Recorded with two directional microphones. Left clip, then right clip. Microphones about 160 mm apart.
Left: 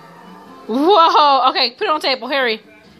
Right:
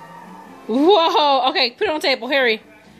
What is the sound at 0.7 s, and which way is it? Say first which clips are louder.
A woman's voice: left 3 dB; centre (ahead or behind).